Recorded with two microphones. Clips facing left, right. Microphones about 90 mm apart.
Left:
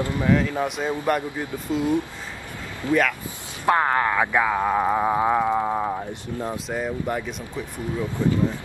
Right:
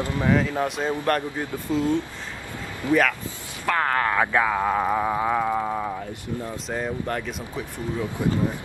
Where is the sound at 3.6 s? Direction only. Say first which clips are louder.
Left 3 dB; 20° left (ahead or behind).